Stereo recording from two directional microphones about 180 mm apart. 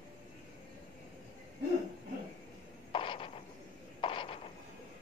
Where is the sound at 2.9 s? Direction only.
30° left (ahead or behind).